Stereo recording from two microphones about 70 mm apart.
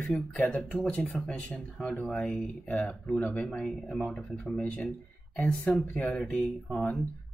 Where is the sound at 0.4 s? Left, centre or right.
Centre.